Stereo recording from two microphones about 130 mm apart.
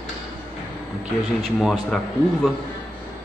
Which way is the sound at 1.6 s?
Centre (ahead or behind).